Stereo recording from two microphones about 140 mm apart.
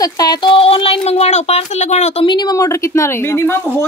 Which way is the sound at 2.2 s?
30° left (ahead or behind).